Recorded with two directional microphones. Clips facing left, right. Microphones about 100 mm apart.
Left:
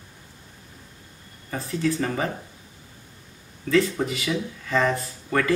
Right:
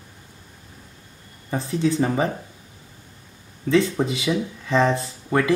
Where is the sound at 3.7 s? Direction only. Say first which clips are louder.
Right 2 dB; 25° right (ahead or behind).